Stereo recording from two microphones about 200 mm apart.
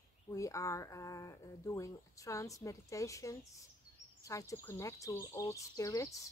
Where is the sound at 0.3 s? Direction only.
15° left (ahead or behind).